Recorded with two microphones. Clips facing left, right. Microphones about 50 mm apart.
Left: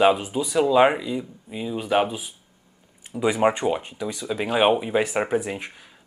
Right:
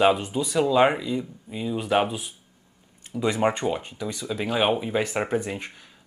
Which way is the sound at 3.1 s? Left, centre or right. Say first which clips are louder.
Left 3 dB; centre.